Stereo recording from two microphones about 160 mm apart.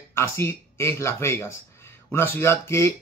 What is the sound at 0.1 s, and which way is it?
Speech, 15° left (ahead or behind).